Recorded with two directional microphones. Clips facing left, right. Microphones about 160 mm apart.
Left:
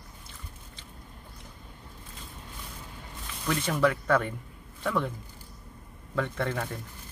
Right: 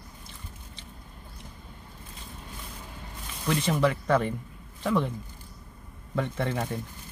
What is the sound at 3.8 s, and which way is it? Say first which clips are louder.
Speech: left 1 dB; 20° right (ahead or behind).